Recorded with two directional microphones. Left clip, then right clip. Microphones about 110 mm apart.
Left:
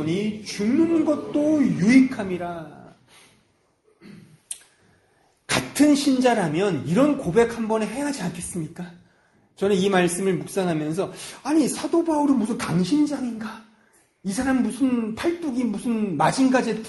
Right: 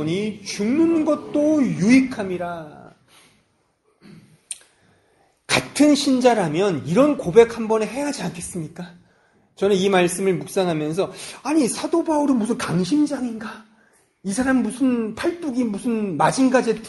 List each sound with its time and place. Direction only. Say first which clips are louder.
0.0 s a man's voice: right 2 dB; 30° right (ahead or behind)
5.5 s a man's voice: right 2 dB; 25° right (ahead or behind)
8.5 s a woman's voice: left 1 dB; centre (ahead or behind)
9.6 s a man's voice: right 3 dB; 20° right (ahead or behind)